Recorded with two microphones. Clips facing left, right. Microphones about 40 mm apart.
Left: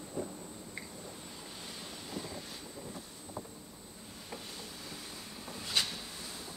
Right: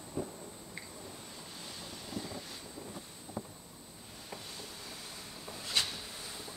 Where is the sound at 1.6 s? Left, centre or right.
Centre.